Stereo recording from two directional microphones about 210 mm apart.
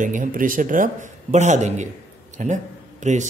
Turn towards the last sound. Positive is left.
turn(degrees=-35)  # may be behind; listen again after turning